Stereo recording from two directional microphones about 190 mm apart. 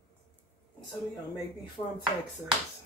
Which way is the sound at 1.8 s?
25° left (ahead or behind).